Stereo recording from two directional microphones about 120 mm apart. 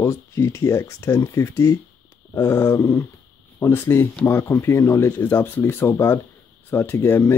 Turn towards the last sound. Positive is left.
turn(degrees=20)  # may be behind; listen again after turning